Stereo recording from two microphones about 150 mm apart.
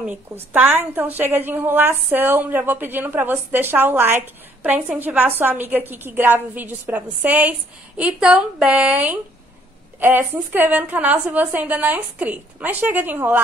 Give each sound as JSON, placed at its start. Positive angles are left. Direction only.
{"t": 0.0, "sound": "a woman's voice", "side_deg": -10}